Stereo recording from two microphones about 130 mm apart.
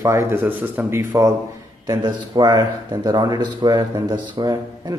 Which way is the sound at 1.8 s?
30° right (ahead or behind).